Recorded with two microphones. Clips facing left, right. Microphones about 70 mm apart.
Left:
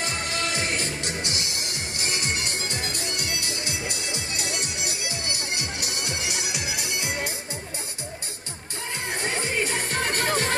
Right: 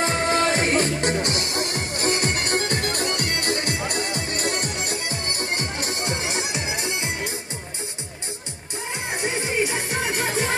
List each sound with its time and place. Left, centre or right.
0.0 s music: right
9.1 s music: centre